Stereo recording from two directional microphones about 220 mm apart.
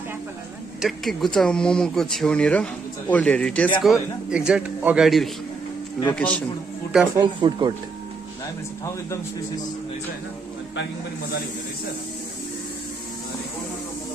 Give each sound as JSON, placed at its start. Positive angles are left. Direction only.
{"t": 0.7, "sound": "speech", "side_deg": 0}
{"t": 7.2, "sound": "speech", "side_deg": -20}